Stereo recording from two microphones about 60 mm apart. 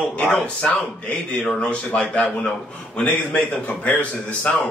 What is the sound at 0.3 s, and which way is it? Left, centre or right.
A man's voice, left.